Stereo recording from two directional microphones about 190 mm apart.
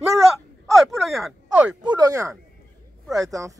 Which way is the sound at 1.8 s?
20° right (ahead or behind).